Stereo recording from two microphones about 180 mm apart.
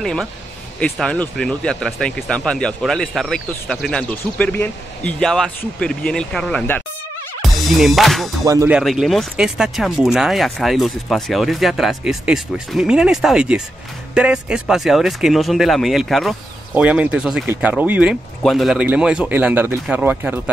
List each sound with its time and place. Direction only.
0.0 s speech: centre (ahead or behind)
7.5 s music: centre (ahead or behind)
8.5 s speech: 15° right (ahead or behind)
8.7 s speech: centre (ahead or behind)